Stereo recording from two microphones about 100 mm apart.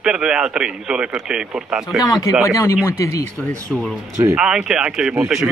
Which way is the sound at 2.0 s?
35° left (ahead or behind).